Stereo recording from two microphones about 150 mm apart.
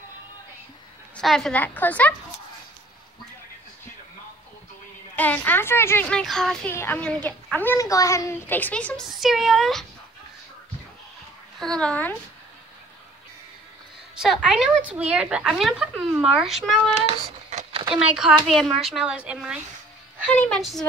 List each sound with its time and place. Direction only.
1.1 s a child's voice: centre (ahead or behind)
5.1 s a child's voice: 10° left (ahead or behind)
6.7 s a child's voice: 15° left (ahead or behind)
11.6 s a child's voice: 5° left (ahead or behind)
14.1 s a woman's voice: 5° right (ahead or behind)
17.0 s a sound: 45° right (ahead or behind)
17.9 s a woman's voice: 5° right (ahead or behind)
20.3 s a woman's voice: 5° left (ahead or behind)